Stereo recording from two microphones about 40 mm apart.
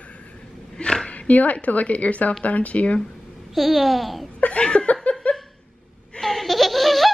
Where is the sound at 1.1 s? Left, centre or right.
Left.